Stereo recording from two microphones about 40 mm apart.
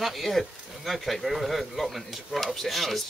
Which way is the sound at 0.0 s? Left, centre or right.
Centre.